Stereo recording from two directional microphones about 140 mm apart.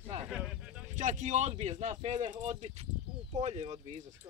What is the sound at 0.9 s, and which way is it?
Speech, 60° right (ahead or behind).